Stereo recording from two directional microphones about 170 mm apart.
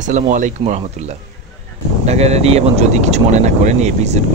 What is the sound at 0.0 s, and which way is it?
Speech, 50° right (ahead or behind).